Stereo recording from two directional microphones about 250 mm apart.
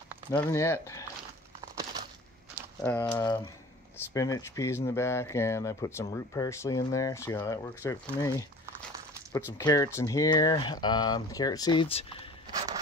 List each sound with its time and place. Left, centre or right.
0.3 s speech: centre
2.8 s speech: centre
9.5 s speech: centre